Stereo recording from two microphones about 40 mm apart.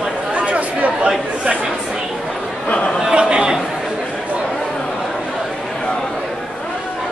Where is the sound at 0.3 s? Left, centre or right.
Right.